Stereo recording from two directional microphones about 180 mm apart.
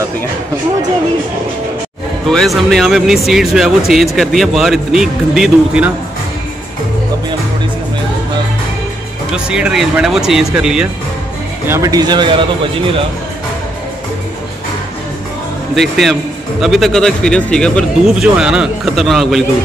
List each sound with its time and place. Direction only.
2.2 s speech: centre (ahead or behind)
9.3 s speech: 5° right (ahead or behind)
11.6 s speech: 15° right (ahead or behind)
15.7 s speech: centre (ahead or behind)